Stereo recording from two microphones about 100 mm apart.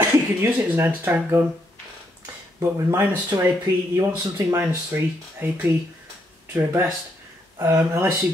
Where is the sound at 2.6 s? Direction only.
30° right (ahead or behind).